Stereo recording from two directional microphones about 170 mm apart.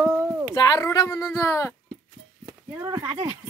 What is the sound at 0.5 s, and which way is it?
Speech, 20° left (ahead or behind).